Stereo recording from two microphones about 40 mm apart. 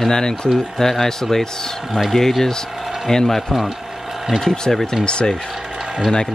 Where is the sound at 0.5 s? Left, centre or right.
Centre.